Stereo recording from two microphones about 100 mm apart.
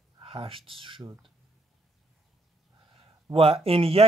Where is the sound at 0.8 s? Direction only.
60° right (ahead or behind).